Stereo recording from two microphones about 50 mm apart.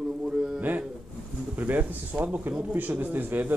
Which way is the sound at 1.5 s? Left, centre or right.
Right.